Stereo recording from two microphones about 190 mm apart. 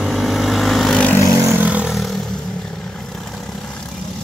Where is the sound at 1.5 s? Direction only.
5° right (ahead or behind).